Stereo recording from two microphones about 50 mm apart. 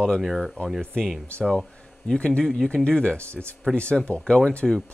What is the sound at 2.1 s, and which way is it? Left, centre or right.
Speech, centre.